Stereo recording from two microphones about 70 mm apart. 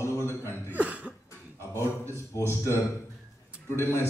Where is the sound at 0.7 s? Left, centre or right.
Right.